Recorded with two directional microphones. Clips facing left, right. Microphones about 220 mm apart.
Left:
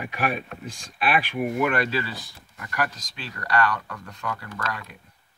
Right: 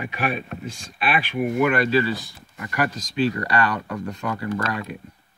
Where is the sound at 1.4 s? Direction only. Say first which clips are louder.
Right 7 dB; centre (ahead or behind).